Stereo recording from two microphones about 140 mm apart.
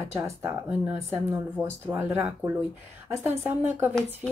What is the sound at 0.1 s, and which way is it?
Speech, 20° right (ahead or behind).